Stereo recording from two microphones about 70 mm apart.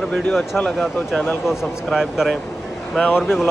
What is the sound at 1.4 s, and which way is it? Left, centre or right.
Speech, centre.